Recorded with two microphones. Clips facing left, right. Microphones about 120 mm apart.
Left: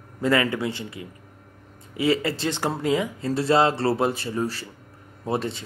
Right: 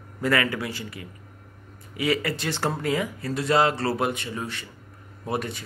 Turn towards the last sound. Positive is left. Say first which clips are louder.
# left 3 dB
turn(degrees=25)  # may be behind; listen again after turning